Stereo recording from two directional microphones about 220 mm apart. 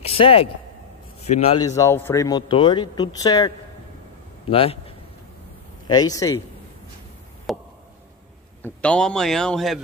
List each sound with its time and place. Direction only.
0.0 s a sound: 25° left (ahead or behind)
1.2 s a man's voice: 30° left (ahead or behind)
1.7 s a man's voice: 15° left (ahead or behind)
5.9 s speech: 15° left (ahead or behind)
7.5 s a sound: centre (ahead or behind)
8.6 s a man's voice: 5° left (ahead or behind)